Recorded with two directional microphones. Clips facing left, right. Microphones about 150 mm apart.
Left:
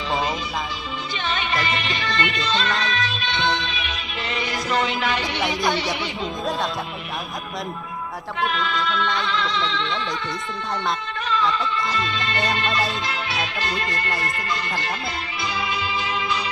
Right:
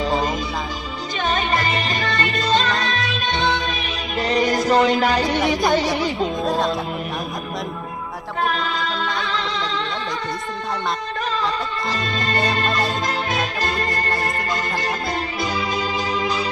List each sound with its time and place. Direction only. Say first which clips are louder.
1.2 s music: right 5 dB; 40° right (ahead or behind)
6.4 s music: right 3 dB; centre (ahead or behind)
8.4 s music: right 2 dB; 40° right (ahead or behind)
11.2 s music: left 2 dB; 40° right (ahead or behind)